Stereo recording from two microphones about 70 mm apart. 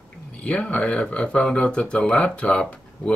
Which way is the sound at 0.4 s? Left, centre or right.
Centre.